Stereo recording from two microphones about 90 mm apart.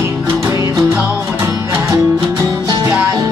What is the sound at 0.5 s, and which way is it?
Music, 35° right (ahead or behind).